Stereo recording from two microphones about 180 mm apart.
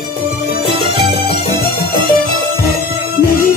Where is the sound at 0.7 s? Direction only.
25° right (ahead or behind).